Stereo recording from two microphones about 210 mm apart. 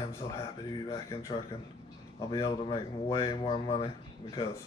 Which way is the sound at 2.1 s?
15° left (ahead or behind).